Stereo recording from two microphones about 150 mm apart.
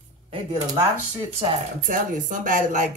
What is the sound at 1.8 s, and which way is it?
Speech, 60° right (ahead or behind).